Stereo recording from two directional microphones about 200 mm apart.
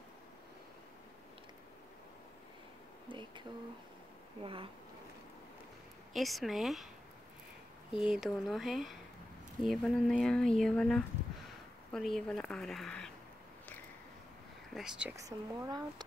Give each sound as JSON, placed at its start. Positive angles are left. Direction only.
{"t": 3.1, "sound": "a sound", "side_deg": -25}
{"t": 4.4, "sound": "speech", "side_deg": -25}
{"t": 6.1, "sound": "speech", "side_deg": 0}
{"t": 7.9, "sound": "speech", "side_deg": -5}
{"t": 14.7, "sound": "speech", "side_deg": 0}